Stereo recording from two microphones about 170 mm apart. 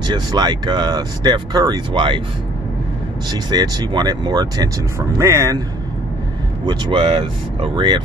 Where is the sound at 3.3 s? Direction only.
25° right (ahead or behind).